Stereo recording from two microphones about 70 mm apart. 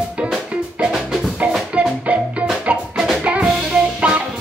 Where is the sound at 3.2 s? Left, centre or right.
Centre.